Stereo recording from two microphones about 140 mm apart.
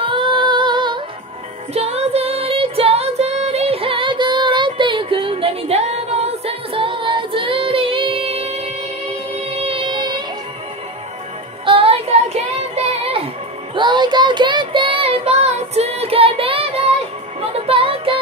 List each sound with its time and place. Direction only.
0.0 s music: 35° right (ahead or behind)
1.7 s music: 50° right (ahead or behind)
11.6 s a sound: 40° right (ahead or behind)
13.7 s child singing: 35° right (ahead or behind)
17.4 s music: 45° right (ahead or behind)